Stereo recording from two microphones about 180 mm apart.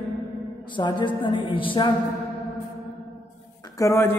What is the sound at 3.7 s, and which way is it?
Speech, 15° left (ahead or behind).